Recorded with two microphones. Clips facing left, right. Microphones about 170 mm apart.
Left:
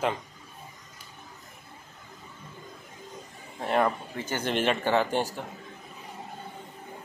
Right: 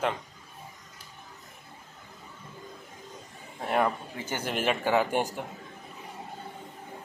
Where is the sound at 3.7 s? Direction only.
5° right (ahead or behind).